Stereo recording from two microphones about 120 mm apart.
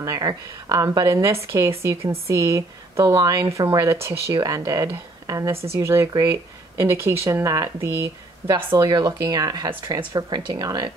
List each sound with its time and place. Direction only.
0.0 s speech: 30° right (ahead or behind)
8.7 s speech: 30° right (ahead or behind)
9.7 s speech: 45° right (ahead or behind)